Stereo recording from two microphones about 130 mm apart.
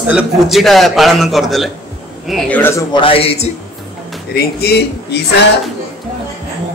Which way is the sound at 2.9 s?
45° left (ahead or behind).